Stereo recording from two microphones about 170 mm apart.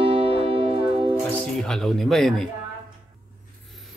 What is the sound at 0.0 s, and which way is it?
Music, 35° right (ahead or behind).